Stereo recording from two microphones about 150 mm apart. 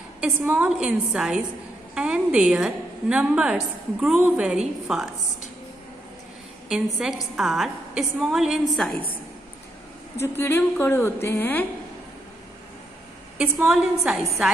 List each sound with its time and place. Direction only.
0.2 s a woman's voice: 10° right (ahead or behind)
6.7 s a woman's voice: 5° right (ahead or behind)
10.1 s a woman's voice: 15° left (ahead or behind)
13.4 s a woman's voice: 5° right (ahead or behind)